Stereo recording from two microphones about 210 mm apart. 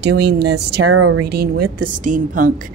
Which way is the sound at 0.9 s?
75° right (ahead or behind).